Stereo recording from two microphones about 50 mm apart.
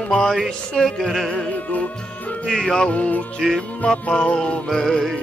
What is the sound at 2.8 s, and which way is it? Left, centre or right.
Music, left.